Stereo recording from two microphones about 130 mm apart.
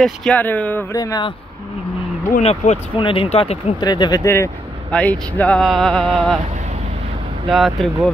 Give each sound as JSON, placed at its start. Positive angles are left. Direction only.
{"t": 0.0, "sound": "speech", "side_deg": 5}
{"t": 0.9, "sound": "speech", "side_deg": 30}
{"t": 2.4, "sound": "speech", "side_deg": 60}
{"t": 3.0, "sound": "speech", "side_deg": 45}
{"t": 3.8, "sound": "speech", "side_deg": 30}
{"t": 4.2, "sound": "speech", "side_deg": 20}
{"t": 4.9, "sound": "speech", "side_deg": 10}
{"t": 7.4, "sound": "speech", "side_deg": 0}